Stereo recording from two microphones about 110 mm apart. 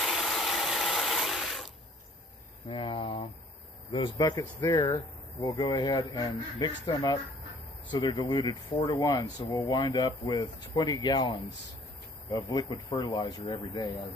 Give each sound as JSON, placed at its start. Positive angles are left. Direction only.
{"t": 0.0, "sound": "rub", "side_deg": 0}
{"t": 2.7, "sound": "a sound", "side_deg": 50}
{"t": 4.2, "sound": "speech", "side_deg": 35}
{"t": 9.4, "sound": "speech", "side_deg": 55}